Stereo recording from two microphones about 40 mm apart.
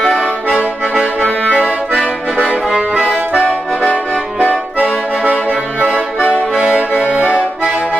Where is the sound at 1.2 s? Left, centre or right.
Left.